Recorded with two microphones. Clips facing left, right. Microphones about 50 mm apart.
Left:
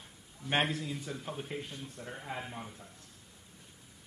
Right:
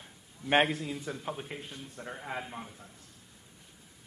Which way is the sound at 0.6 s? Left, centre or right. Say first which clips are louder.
Right 4 dB; centre.